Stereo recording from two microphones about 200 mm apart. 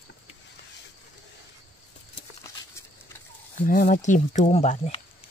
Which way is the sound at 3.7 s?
40° left (ahead or behind).